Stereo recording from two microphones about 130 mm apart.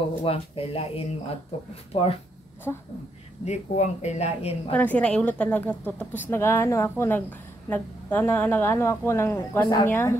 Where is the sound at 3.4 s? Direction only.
60° left (ahead or behind).